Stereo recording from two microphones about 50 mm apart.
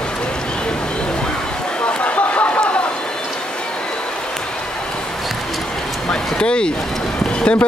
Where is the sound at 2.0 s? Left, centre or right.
Left.